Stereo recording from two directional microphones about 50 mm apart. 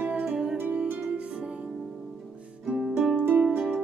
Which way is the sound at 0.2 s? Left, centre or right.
Centre.